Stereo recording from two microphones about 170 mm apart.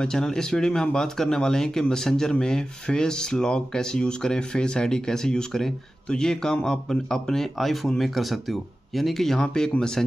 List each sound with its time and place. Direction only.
0.0 s speech: 5° left (ahead or behind)